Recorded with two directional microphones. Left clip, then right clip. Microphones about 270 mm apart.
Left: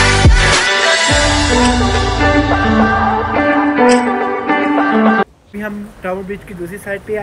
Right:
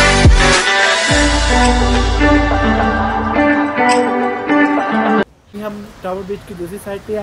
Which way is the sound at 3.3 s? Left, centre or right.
Centre.